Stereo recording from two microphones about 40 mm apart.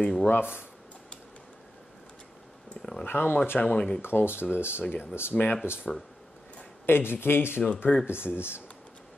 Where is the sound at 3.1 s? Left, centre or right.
Left.